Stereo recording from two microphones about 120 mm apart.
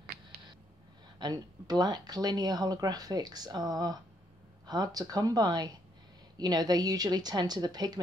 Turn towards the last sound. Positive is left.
turn(degrees=-35)  # may be behind; listen again after turning